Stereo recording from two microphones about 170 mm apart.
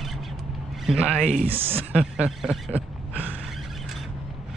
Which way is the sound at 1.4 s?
35° right (ahead or behind).